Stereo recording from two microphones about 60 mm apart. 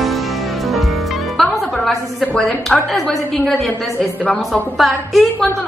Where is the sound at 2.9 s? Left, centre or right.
Centre.